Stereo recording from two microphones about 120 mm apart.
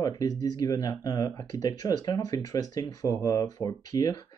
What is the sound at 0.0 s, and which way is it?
Speech, 30° left (ahead or behind).